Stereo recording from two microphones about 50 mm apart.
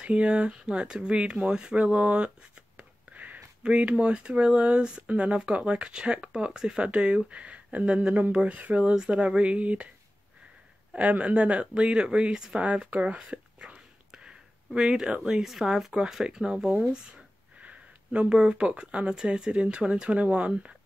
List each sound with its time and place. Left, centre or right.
0.0 s speech: right
8.9 s speech: centre
10.9 s speech: right
14.1 s a sound: centre
15.6 s speech: centre